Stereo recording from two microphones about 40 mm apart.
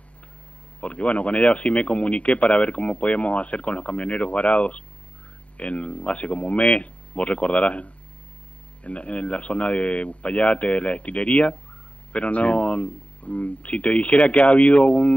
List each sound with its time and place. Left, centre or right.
0.7 s speech: left